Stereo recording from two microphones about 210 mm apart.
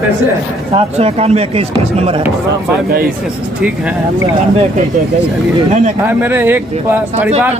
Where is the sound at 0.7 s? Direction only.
30° right (ahead or behind).